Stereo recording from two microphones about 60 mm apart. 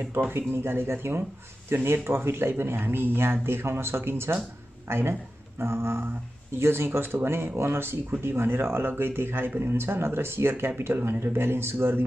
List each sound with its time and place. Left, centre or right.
0.3 s speech: right
5.6 s a sound: right
6.6 s speech: right